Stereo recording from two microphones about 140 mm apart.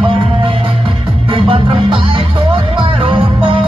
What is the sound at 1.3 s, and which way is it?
Music, 40° right (ahead or behind).